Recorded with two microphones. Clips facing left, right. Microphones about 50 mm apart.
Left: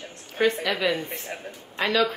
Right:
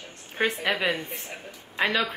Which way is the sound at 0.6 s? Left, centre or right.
Right.